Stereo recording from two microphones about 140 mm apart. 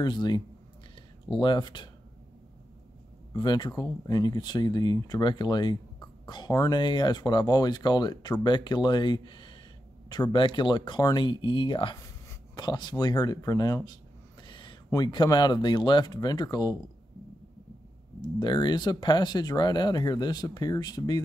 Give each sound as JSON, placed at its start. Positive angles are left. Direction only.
{"t": 0.0, "sound": "speech", "side_deg": 30}
{"t": 1.4, "sound": "speech", "side_deg": 35}
{"t": 3.3, "sound": "speech", "side_deg": 30}
{"t": 12.0, "sound": "speech", "side_deg": 25}
{"t": 14.4, "sound": "a sound", "side_deg": 35}
{"t": 14.9, "sound": "speech", "side_deg": 30}
{"t": 18.2, "sound": "speech", "side_deg": 30}